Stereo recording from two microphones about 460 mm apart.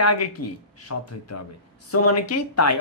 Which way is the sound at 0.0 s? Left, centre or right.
Left.